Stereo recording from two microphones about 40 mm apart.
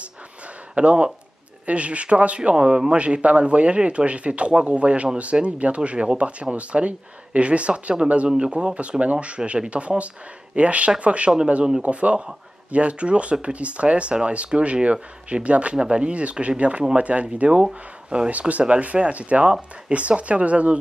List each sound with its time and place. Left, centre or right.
0.7 s speech: right
2.5 s speech: centre